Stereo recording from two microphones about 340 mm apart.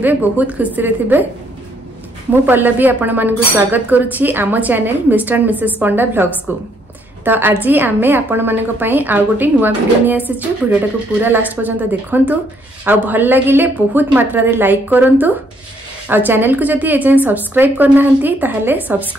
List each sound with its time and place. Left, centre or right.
0.0 s a woman's voice: centre
2.4 s a woman's voice: centre
7.2 s a woman's voice: centre